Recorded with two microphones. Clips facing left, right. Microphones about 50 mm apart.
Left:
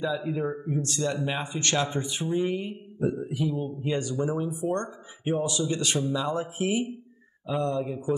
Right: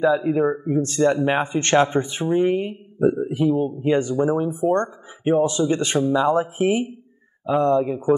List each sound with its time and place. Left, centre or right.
0.0 s speech: right